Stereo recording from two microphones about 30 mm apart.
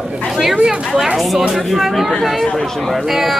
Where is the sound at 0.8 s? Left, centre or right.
Centre.